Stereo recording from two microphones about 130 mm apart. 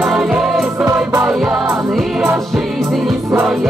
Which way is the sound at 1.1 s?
20° right (ahead or behind).